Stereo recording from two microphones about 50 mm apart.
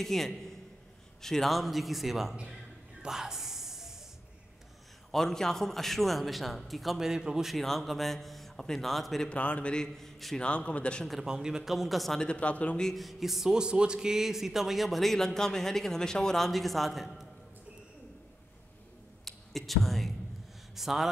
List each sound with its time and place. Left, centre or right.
0.0 s a man's voice: centre
3.1 s music: centre
5.1 s speech: centre
7.1 s a man's voice: centre
7.4 s speech: centre
9.3 s a man's voice: left
9.9 s a man's voice: centre
10.4 s a man's voice: left
11.2 s speech: centre
12.2 s a man's voice: left
12.9 s speech: centre
19.2 s a sound: centre
20.7 s speech: centre